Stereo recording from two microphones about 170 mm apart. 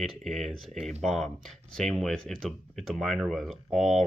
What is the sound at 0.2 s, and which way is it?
Speech, centre (ahead or behind).